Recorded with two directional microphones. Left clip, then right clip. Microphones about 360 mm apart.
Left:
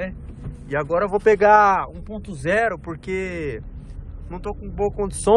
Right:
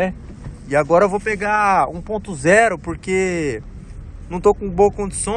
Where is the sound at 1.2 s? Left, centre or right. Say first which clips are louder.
Left 5 dB; centre.